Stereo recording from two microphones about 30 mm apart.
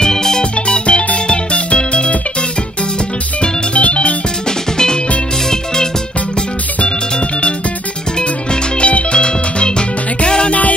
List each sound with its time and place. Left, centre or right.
0.0 s music: centre
0.4 s music: left
3.3 s music: left
4.5 s music: left
7.2 s music: left